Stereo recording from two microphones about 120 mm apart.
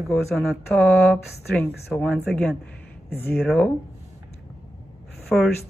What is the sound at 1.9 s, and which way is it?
Speech, 10° left (ahead or behind).